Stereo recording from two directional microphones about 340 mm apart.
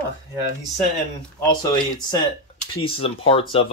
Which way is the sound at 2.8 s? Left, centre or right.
Centre.